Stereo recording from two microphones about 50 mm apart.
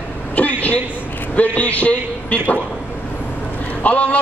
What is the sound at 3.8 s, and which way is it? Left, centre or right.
Speech, left.